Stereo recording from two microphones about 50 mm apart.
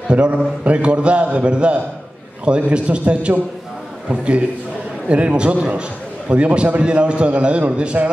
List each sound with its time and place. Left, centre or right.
0.1 s a man's voice: right